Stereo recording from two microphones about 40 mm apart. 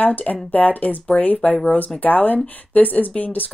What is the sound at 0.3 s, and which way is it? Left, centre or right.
Speech, left.